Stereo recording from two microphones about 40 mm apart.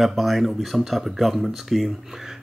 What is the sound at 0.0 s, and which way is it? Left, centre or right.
Speech, centre.